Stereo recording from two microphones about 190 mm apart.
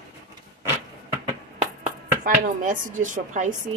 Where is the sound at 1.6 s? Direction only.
40° right (ahead or behind).